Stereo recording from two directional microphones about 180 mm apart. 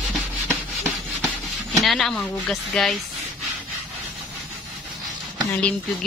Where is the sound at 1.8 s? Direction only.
Centre (ahead or behind).